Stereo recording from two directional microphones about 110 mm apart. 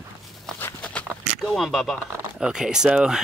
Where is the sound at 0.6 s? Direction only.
20° left (ahead or behind).